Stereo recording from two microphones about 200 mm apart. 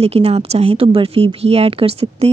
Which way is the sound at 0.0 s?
30° right (ahead or behind).